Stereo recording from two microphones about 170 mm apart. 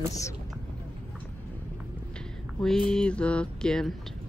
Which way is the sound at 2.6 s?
5° left (ahead or behind).